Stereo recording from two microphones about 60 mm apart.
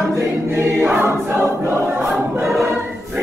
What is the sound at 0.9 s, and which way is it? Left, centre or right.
Choir, right.